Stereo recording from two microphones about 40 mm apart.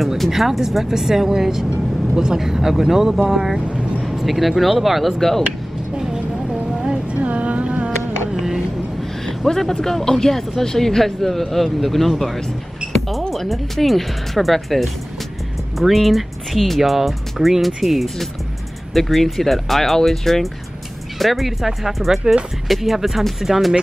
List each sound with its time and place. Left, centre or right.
0.3 s speech: centre
3.5 s vehicle: right
4.0 s speech: centre
5.9 s a sound: centre
8.4 s a sound: centre
9.5 s speech: centre
13.3 s speech: centre